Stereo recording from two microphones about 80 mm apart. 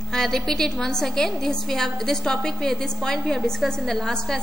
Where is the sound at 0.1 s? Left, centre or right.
Centre.